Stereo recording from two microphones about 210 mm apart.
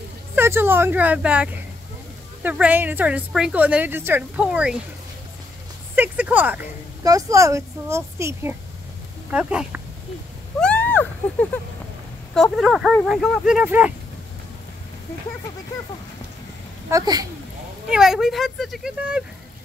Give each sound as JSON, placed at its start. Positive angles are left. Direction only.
{"t": 0.4, "sound": "speech", "side_deg": -10}
{"t": 5.9, "sound": "speech", "side_deg": -5}
{"t": 10.6, "sound": "a sound", "side_deg": 5}
{"t": 12.4, "sound": "speech", "side_deg": 0}
{"t": 16.9, "sound": "speech", "side_deg": -15}
{"t": 17.8, "sound": "speech", "side_deg": -5}